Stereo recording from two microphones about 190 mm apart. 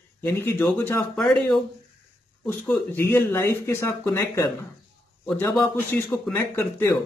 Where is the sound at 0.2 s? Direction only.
10° left (ahead or behind).